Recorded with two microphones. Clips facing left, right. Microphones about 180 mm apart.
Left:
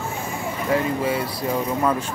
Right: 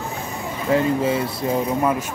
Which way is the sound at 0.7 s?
25° right (ahead or behind).